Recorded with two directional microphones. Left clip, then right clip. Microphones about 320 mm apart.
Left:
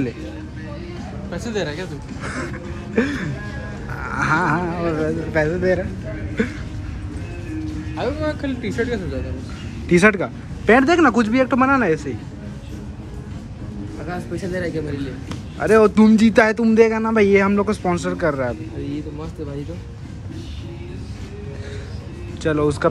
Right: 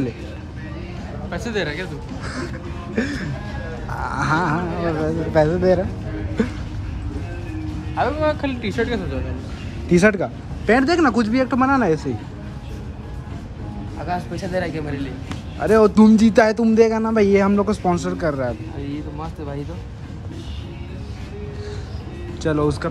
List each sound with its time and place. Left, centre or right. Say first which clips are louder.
1.3 s a man's voice: right 1 dB; centre
7.9 s a man's voice: right 4 dB; centre
14.0 s a sound: right 3 dB; right
14.9 s a man's voice: even; centre
22.4 s a man's voice: left 1 dB; centre